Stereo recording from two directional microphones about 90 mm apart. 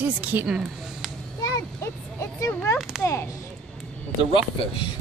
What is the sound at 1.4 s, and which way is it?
Speech, 40° left (ahead or behind).